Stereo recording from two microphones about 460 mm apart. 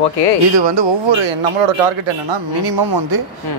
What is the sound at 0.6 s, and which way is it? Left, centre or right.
Speech, right.